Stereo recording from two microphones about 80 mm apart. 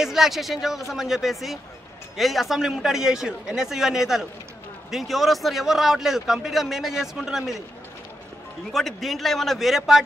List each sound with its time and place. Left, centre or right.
0.0 s a man's voice: centre
8.7 s a man's voice: centre